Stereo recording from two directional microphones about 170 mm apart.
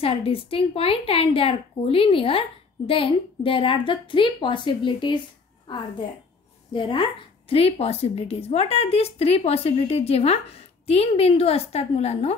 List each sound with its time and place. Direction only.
0.0 s a woman's voice: 35° left (ahead or behind)
6.7 s a woman's voice: 30° left (ahead or behind)